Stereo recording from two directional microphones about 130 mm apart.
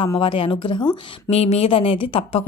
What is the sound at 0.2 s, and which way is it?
Speech, 40° left (ahead or behind).